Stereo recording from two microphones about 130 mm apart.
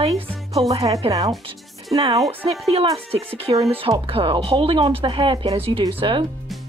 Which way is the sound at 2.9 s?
45° right (ahead or behind).